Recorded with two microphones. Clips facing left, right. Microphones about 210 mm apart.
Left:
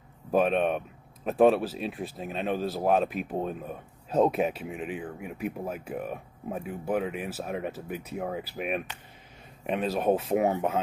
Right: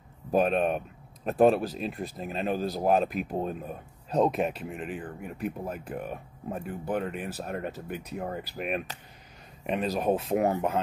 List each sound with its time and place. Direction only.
0.3 s speech: centre (ahead or behind)